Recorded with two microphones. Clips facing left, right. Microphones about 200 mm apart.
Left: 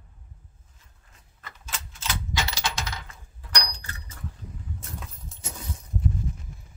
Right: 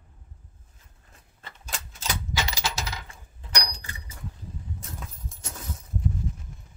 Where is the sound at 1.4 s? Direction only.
35° right (ahead or behind).